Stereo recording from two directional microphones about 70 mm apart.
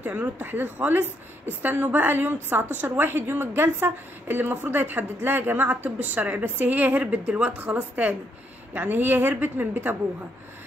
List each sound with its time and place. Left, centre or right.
0.0 s a woman's voice: right